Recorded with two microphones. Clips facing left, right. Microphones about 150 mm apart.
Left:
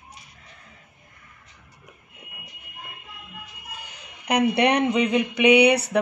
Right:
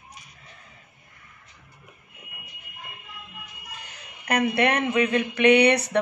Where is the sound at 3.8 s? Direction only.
15° left (ahead or behind).